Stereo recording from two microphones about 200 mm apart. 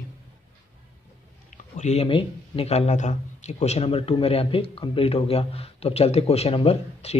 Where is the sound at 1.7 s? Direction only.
35° left (ahead or behind).